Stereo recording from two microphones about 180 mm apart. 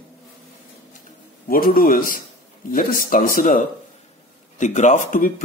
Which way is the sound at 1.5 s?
55° left (ahead or behind).